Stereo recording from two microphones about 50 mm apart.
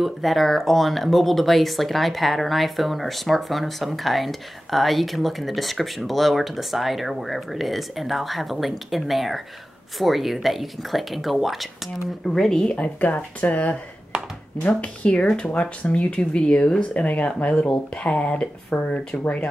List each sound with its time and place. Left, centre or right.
0.0 s speech: centre
12.3 s a woman's voice: centre
12.7 s speech: left
14.8 s a woman's voice: left
16.9 s speech: left